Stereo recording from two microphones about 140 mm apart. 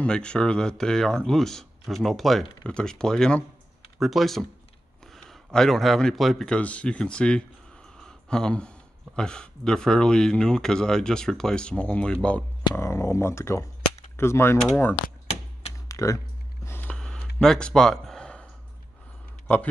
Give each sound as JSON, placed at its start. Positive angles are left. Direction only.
{"t": 0.0, "sound": "speech", "side_deg": 5}
{"t": 12.7, "sound": "speech", "side_deg": 20}
{"t": 15.9, "sound": "typing", "side_deg": 20}
{"t": 16.6, "sound": "a sound", "side_deg": 15}
{"t": 19.4, "sound": "speech", "side_deg": 10}